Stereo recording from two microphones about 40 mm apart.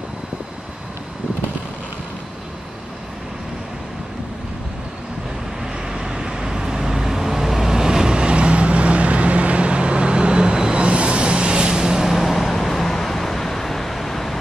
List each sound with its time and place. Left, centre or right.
5.9 s vehicle: centre
12.4 s vehicle: centre